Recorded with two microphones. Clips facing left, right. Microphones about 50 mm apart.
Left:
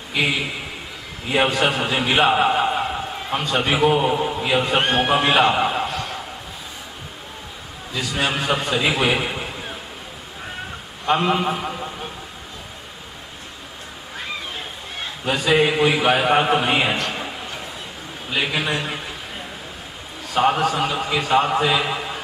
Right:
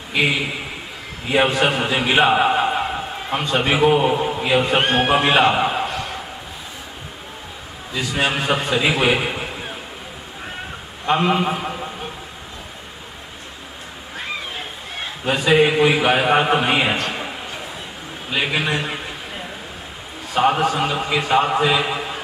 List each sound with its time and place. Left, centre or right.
1.6 s a man's voice: centre
8.0 s a man's voice: centre
11.1 s a man's voice: centre
15.2 s a man's voice: centre
18.3 s a sound: centre
20.3 s a man's voice: centre
21.7 s a sound: centre